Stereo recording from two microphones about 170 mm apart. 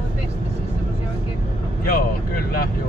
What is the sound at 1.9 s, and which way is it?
Vehicle, 60° left (ahead or behind).